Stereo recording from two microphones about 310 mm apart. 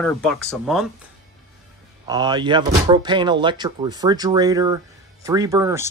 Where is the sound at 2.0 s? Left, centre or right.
Centre.